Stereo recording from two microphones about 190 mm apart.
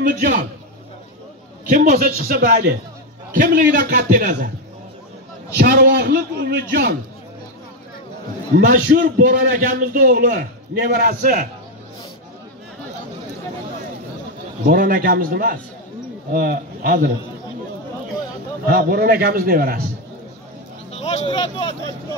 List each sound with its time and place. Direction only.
0.0 s a man's voice: 45° right (ahead or behind)
1.7 s a man's voice: 50° right (ahead or behind)
5.6 s a man's voice: 55° right (ahead or behind)
6.7 s a man's voice: 60° right (ahead or behind)
8.5 s a man's voice: 50° right (ahead or behind)
14.7 s a man's voice: 50° right (ahead or behind)
18.7 s a man's voice: 50° right (ahead or behind)
20.9 s speech: 35° left (ahead or behind)